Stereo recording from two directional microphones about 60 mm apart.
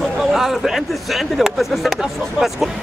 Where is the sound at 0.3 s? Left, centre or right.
Centre.